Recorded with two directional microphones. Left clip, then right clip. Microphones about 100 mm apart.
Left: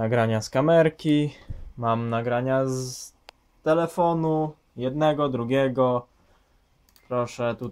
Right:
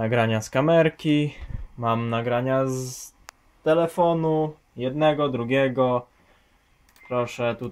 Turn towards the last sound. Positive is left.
turn(degrees=0)  # may be behind; listen again after turning